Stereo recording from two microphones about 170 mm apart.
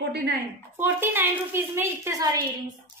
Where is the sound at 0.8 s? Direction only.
10° right (ahead or behind).